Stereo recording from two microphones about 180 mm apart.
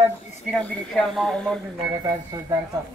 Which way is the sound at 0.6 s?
5° left (ahead or behind).